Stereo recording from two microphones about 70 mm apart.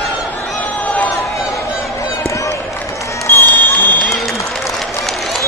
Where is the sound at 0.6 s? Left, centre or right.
Left.